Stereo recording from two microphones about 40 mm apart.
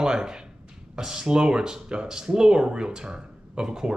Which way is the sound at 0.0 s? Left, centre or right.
Centre.